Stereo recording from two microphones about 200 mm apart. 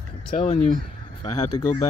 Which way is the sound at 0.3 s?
35° left (ahead or behind).